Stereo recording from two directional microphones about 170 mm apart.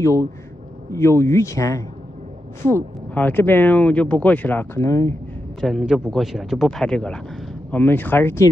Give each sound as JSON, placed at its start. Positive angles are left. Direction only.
{"t": 0.9, "sound": "speech", "side_deg": 15}
{"t": 5.6, "sound": "a man's voice", "side_deg": 0}